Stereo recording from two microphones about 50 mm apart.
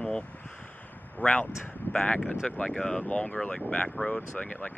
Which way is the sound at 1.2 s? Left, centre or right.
Left.